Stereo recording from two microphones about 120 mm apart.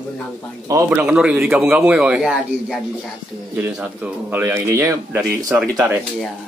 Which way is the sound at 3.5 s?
15° right (ahead or behind).